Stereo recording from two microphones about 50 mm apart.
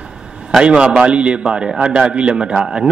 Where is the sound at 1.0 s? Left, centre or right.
Right.